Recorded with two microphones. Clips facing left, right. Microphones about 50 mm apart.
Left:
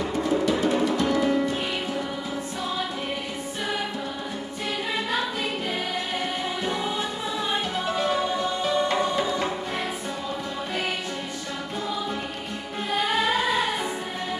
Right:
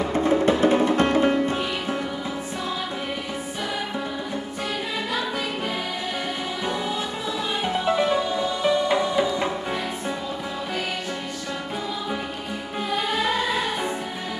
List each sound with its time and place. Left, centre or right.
0.0 s music: right
7.6 s music: right
8.6 s music: centre